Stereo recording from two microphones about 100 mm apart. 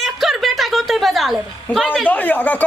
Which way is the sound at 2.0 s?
15° left (ahead or behind).